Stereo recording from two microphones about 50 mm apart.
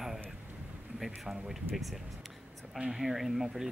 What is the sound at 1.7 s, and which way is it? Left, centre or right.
Speech, centre.